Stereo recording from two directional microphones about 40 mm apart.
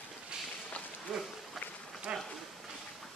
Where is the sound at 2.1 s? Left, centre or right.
Right.